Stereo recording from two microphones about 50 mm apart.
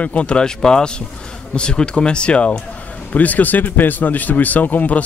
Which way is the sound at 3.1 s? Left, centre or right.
Left.